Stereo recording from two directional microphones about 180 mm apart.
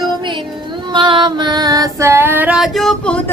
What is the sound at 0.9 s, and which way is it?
Female singing, 25° right (ahead or behind).